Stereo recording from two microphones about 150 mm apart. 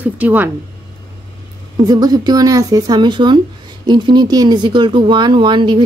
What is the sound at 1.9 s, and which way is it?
A woman's voice, 25° right (ahead or behind).